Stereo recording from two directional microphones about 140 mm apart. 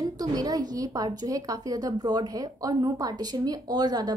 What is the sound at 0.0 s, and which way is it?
A woman's voice, 25° right (ahead or behind).